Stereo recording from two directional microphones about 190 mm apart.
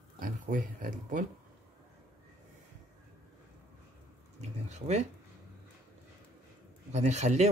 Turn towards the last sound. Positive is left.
turn(degrees=-35)  # may be behind; listen again after turning